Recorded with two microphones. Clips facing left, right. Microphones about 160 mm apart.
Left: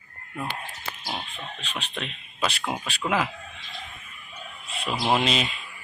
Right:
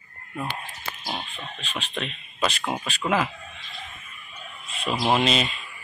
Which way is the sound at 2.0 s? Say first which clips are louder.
Right 3 dB; 5° left (ahead or behind).